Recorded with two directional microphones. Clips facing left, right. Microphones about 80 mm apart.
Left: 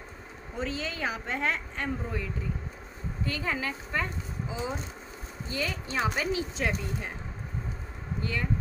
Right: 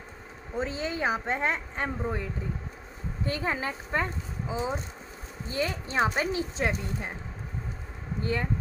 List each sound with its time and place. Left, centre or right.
0.6 s speech: right
3.3 s speech: right
8.2 s speech: right